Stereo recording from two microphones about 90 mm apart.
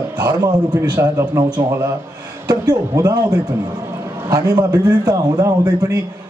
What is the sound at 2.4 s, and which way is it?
A man's voice, 45° right (ahead or behind).